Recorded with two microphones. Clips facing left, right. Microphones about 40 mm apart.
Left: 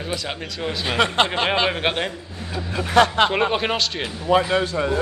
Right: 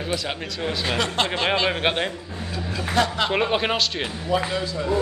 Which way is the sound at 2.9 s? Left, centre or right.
Left.